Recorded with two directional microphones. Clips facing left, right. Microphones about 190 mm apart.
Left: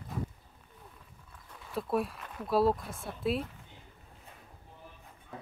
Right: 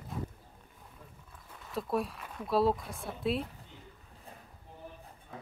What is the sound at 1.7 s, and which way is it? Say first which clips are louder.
Speech: left 1 dB; centre (ahead or behind).